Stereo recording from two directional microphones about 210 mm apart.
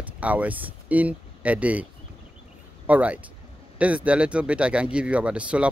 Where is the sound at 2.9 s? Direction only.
5° right (ahead or behind).